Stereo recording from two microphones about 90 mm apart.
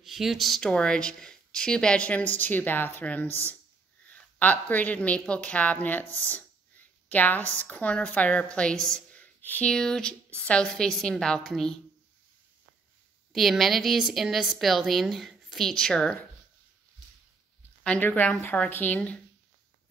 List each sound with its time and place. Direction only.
0.0 s a woman's voice: 5° right (ahead or behind)
9.1 s a sound: 20° left (ahead or behind)
9.7 s speech: 5° left (ahead or behind)
13.3 s a woman's voice: centre (ahead or behind)
17.8 s speech: 20° left (ahead or behind)